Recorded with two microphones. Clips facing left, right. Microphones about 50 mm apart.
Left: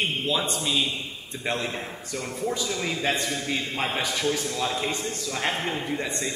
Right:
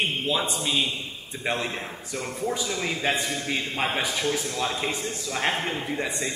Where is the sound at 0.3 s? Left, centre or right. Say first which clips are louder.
Even; centre.